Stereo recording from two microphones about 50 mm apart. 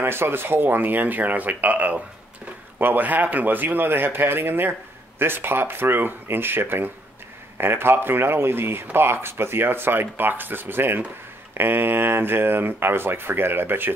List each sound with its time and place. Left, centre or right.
0.0 s speech: right